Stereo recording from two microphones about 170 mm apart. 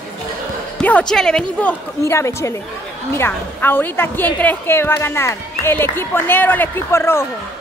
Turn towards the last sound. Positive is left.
turn(degrees=15)  # may be behind; listen again after turning